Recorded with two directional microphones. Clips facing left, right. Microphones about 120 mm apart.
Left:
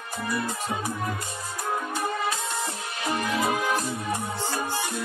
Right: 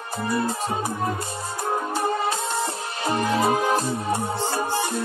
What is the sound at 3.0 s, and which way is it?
Music, 35° right (ahead or behind).